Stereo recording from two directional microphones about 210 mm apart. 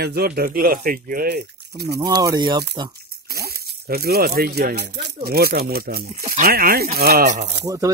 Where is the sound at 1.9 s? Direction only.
20° right (ahead or behind).